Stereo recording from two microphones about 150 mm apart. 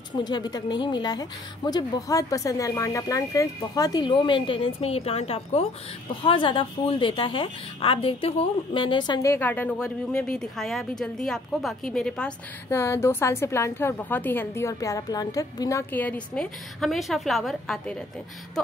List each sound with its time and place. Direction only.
0.1 s a woman's voice: 30° left (ahead or behind)
9.3 s speech: 10° left (ahead or behind)
12.7 s a woman's voice: 20° left (ahead or behind); by 17.9 s centre (ahead or behind)